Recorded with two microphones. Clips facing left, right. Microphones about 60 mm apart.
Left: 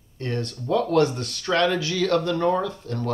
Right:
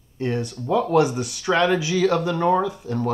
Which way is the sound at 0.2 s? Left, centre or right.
Centre.